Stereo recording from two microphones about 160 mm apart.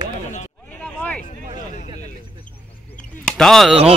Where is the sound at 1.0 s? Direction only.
10° left (ahead or behind).